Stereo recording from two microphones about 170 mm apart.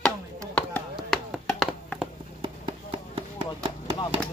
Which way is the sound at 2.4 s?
30° right (ahead or behind).